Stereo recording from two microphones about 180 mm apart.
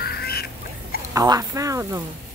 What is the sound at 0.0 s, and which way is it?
Duck, 60° left (ahead or behind).